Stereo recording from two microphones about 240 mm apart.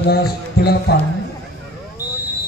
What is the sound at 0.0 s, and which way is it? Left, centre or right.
Speech, left.